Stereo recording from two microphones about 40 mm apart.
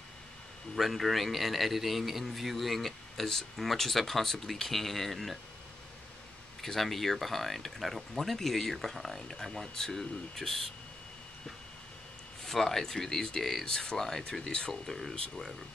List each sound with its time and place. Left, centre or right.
0.7 s a man's voice: centre
6.6 s a man's voice: centre
12.4 s a man's voice: centre
13.7 s speech: centre